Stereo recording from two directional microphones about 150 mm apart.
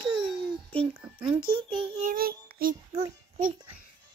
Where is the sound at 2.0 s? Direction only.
70° right (ahead or behind).